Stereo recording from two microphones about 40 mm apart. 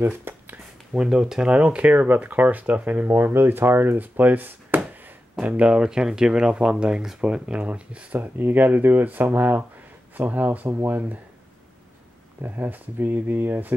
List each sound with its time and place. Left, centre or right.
0.0 s speech: right
0.9 s speech: right
3.1 s speech: right
5.4 s speech: right
8.2 s speech: right
12.4 s speech: right